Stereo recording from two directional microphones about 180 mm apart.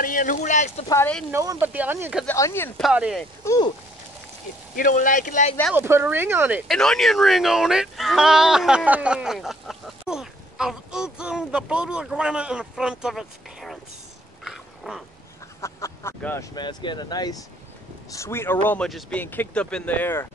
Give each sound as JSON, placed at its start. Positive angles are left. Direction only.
{"t": 0.0, "sound": "speech", "side_deg": 50}
{"t": 0.8, "sound": "speech", "side_deg": 15}
{"t": 1.3, "sound": "speech", "side_deg": -15}
{"t": 2.2, "sound": "speech", "side_deg": 15}
{"t": 2.8, "sound": "speech", "side_deg": -5}
{"t": 3.4, "sound": "speech", "side_deg": 20}
{"t": 4.7, "sound": "speech", "side_deg": 50}
{"t": 5.8, "sound": "speech", "side_deg": -10}
{"t": 6.7, "sound": "speech", "side_deg": 0}
{"t": 14.4, "sound": "a sound", "side_deg": -5}
{"t": 15.6, "sound": "speech", "side_deg": 15}
{"t": 16.5, "sound": "speech", "side_deg": 25}